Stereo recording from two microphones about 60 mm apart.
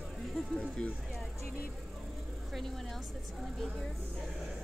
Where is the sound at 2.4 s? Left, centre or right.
Centre.